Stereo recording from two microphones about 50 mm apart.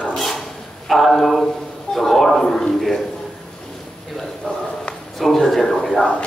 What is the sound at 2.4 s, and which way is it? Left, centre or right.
Speech, centre.